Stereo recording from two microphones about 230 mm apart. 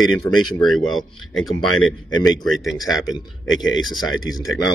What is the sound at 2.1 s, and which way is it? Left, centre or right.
Speech, centre.